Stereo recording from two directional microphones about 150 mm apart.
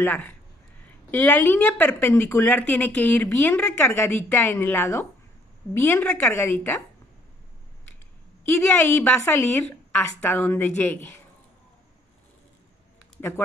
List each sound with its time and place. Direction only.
0.0 s speech: 10° left (ahead or behind)
8.5 s speech: 15° left (ahead or behind)